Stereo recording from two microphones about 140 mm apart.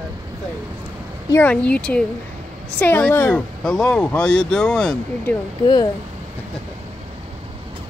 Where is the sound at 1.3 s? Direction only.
10° left (ahead or behind).